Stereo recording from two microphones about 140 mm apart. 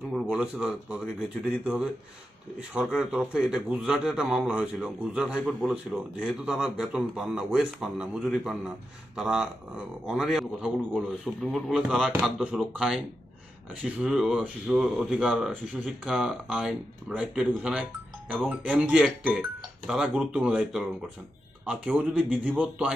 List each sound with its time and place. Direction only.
0.1 s speech: 5° right (ahead or behind)